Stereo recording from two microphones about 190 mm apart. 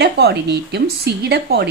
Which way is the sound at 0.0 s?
60° right (ahead or behind).